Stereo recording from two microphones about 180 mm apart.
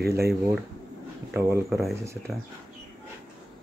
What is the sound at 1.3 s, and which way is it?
Speech, 15° right (ahead or behind).